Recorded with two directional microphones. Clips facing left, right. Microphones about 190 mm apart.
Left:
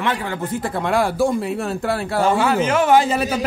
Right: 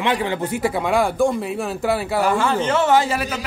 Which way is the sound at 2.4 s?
10° left (ahead or behind).